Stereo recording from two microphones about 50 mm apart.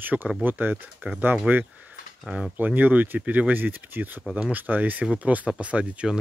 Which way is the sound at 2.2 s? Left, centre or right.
Centre.